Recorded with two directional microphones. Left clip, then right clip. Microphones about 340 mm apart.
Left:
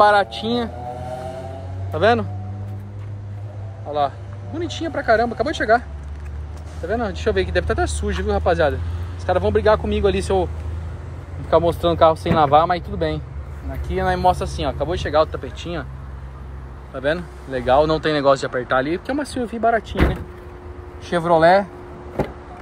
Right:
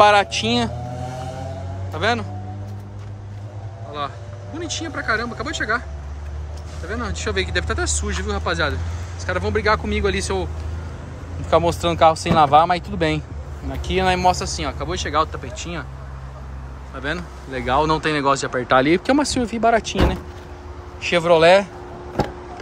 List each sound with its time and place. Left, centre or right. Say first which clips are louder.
0.0 s speech: right 1 dB; centre
2.0 s speech: left 5 dB; centre
4.6 s speech: left 2 dB; centre
6.9 s speech: left 5 dB; centre
11.6 s speech: even; right
13.9 s speech: even; centre
16.9 s speech: left 5 dB; centre
21.1 s speech: right 1 dB; centre